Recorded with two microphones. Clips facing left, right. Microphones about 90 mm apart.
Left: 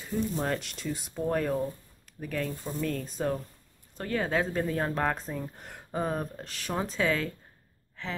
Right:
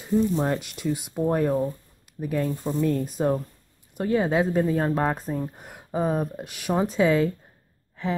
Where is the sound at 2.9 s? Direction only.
10° right (ahead or behind).